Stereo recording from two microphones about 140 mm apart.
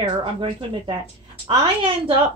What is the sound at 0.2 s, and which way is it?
A woman's voice, 40° right (ahead or behind).